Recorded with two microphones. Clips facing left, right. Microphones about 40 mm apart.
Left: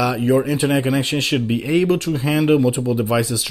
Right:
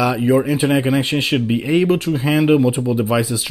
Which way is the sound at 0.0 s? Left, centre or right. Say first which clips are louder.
Right 2 dB; centre.